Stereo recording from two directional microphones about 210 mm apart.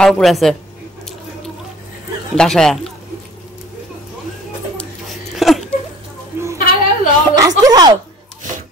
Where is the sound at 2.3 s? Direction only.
Centre (ahead or behind).